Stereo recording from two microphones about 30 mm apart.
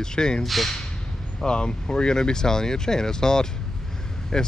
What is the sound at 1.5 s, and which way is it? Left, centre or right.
Speech, left.